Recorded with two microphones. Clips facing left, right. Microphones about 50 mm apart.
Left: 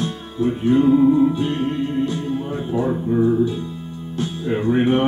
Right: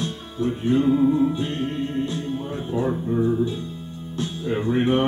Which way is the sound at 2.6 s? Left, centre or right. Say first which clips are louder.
Left 2 dB; centre.